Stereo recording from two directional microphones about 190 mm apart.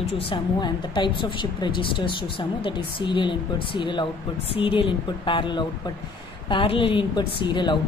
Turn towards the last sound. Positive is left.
turn(degrees=25)  # may be behind; listen again after turning